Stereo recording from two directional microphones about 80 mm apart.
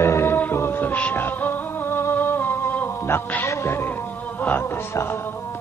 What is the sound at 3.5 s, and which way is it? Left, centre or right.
Music, left.